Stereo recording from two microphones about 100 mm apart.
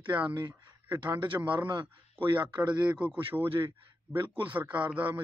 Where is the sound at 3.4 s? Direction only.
65° right (ahead or behind).